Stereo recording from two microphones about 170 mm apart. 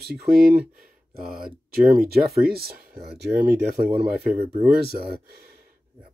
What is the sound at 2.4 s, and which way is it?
Speech, 65° right (ahead or behind).